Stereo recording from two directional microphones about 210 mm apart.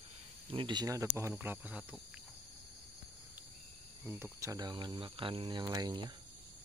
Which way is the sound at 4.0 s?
10° right (ahead or behind).